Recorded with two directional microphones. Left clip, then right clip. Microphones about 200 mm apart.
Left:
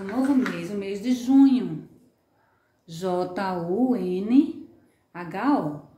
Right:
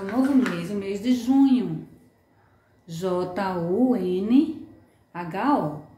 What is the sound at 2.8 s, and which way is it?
A woman's voice, 15° left (ahead or behind).